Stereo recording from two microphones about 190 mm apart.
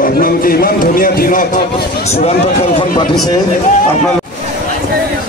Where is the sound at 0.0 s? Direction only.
50° left (ahead or behind).